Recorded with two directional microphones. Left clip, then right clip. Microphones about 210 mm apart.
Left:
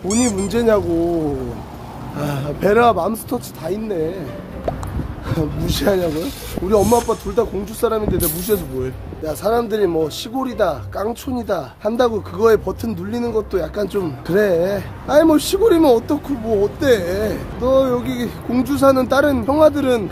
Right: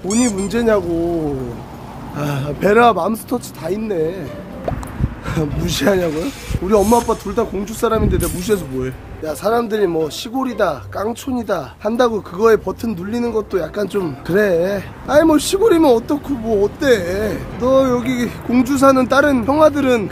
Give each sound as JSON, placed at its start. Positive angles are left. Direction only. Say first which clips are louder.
{"t": 0.1, "sound": "speech", "louder": "right 1 dB", "side_deg": 0}
{"t": 2.1, "sound": "speech", "louder": "right 1 dB", "side_deg": -10}
{"t": 5.3, "sound": "speech", "louder": "right 1 dB", "side_deg": -10}
{"t": 6.8, "sound": "speech", "louder": "right 1 dB", "side_deg": 0}
{"t": 7.2, "sound": "speech", "louder": "even", "side_deg": -10}